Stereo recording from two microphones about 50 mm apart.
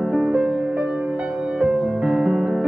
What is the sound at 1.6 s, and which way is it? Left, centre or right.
Music, centre.